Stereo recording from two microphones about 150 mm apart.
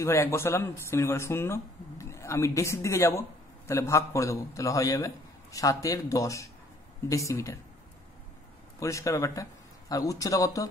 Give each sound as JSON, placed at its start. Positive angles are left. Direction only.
{"t": 0.0, "sound": "speech", "side_deg": 15}
{"t": 8.7, "sound": "speech", "side_deg": 20}